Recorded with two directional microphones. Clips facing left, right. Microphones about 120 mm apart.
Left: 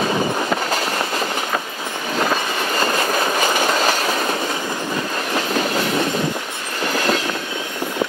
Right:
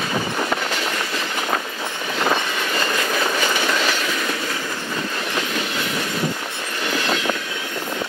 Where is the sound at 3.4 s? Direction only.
40° left (ahead or behind).